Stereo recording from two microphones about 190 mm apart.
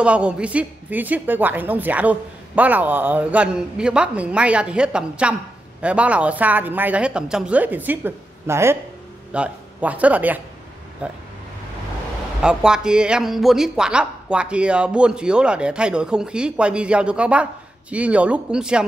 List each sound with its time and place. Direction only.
0.0 s a woman's voice: 5° right (ahead or behind)
12.4 s a man's voice: 5° right (ahead or behind)